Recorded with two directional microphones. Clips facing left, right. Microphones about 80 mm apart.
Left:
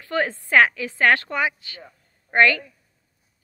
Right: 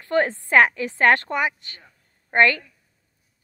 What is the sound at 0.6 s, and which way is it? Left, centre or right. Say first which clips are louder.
A woman's voice: even; right.